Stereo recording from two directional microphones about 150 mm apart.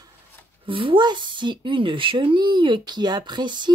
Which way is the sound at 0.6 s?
35° right (ahead or behind).